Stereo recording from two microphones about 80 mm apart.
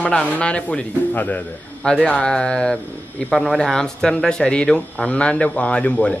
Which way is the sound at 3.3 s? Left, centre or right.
Centre.